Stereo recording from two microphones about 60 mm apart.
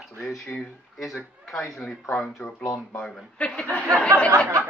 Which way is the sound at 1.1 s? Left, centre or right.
Centre.